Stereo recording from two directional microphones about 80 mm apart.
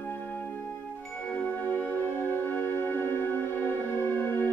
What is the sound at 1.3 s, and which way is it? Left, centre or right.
Music, left.